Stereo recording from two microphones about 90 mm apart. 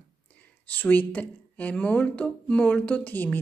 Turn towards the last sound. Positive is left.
turn(degrees=20)  # may be behind; listen again after turning